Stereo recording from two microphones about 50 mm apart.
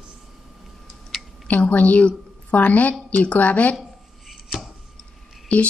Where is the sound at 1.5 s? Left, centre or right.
Left.